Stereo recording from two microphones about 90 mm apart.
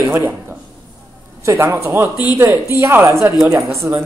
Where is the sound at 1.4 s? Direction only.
25° right (ahead or behind).